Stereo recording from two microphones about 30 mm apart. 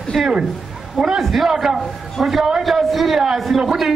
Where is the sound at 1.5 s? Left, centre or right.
Centre.